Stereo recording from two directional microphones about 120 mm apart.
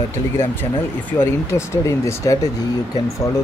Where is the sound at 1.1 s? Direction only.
20° left (ahead or behind).